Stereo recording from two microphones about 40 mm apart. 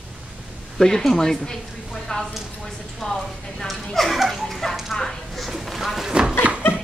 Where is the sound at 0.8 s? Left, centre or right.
Centre.